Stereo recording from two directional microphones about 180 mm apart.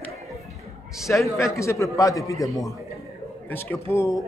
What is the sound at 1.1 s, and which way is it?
A man's voice, 10° left (ahead or behind).